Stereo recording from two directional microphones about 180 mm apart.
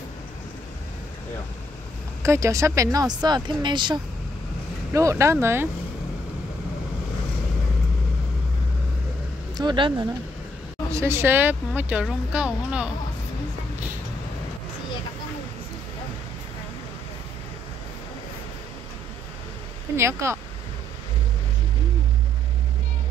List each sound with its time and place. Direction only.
2.2 s speech: 15° right (ahead or behind)
9.6 s speech: 25° right (ahead or behind)
10.9 s speech: 15° right (ahead or behind)
20.0 s speech: 15° right (ahead or behind)